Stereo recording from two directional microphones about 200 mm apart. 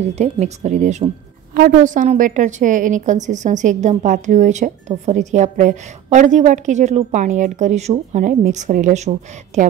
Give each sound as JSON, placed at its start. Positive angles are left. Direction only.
{"t": 0.1, "sound": "a woman's voice", "side_deg": -35}